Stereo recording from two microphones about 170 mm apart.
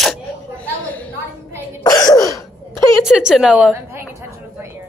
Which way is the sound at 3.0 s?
5° right (ahead or behind).